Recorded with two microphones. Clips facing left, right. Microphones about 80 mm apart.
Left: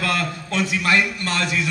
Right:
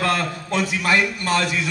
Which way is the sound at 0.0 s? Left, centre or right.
Right.